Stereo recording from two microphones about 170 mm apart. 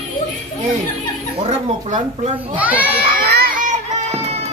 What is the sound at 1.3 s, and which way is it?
Speech, 40° right (ahead or behind).